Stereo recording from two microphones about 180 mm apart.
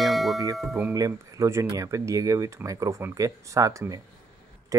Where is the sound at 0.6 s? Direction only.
5° right (ahead or behind).